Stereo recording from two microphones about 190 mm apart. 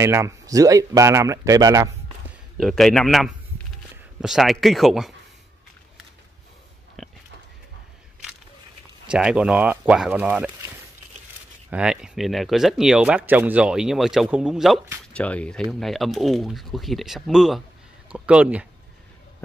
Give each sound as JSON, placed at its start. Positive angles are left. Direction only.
{"t": 0.0, "sound": "speech", "side_deg": -15}
{"t": 2.5, "sound": "speech", "side_deg": 0}
{"t": 7.0, "sound": "a sound", "side_deg": 0}
{"t": 9.0, "sound": "speech", "side_deg": -5}
{"t": 11.7, "sound": "speech", "side_deg": -5}